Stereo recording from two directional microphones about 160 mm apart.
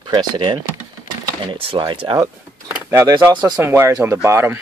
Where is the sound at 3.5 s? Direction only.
15° right (ahead or behind).